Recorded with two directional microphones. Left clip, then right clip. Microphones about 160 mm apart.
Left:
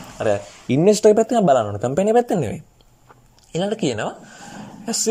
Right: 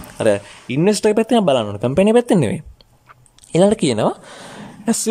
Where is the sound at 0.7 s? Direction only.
Centre (ahead or behind).